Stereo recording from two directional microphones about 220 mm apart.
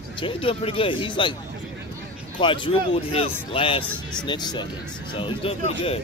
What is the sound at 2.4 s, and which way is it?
Speech, 20° left (ahead or behind).